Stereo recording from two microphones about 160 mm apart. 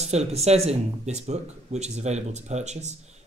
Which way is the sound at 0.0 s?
40° right (ahead or behind).